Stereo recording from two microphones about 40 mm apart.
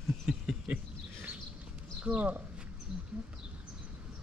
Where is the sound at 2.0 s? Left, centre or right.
Right.